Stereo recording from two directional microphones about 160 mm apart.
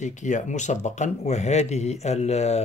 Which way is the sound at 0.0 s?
50° left (ahead or behind).